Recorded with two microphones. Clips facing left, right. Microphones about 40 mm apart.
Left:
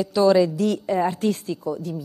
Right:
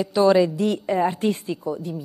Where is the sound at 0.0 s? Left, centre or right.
Right.